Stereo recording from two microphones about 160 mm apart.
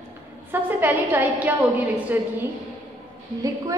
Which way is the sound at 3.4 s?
20° right (ahead or behind).